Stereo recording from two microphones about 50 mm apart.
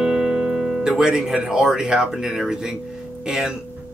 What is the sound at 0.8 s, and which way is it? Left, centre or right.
Speech, centre.